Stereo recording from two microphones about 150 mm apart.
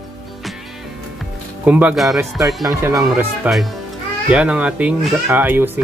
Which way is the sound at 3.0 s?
5° right (ahead or behind).